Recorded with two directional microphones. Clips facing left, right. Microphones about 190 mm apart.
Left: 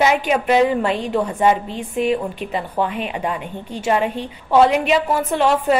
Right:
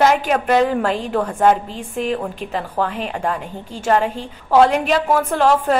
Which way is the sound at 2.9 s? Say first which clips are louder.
Even; 40° right (ahead or behind).